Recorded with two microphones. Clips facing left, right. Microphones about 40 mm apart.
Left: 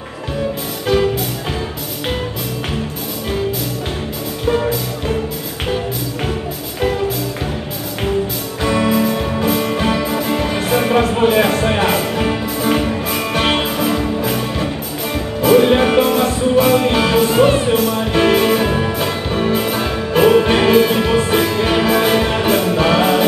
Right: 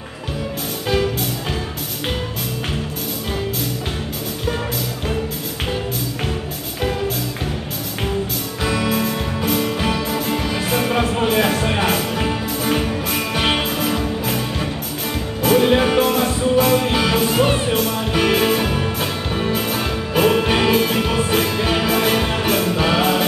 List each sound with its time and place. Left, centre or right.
8.6 s music: centre
10.4 s music: left
10.7 s music: centre